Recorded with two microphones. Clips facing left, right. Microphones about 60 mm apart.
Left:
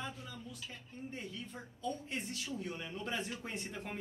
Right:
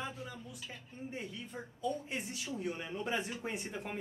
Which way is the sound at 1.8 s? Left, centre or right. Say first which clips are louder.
Right 2 dB; centre.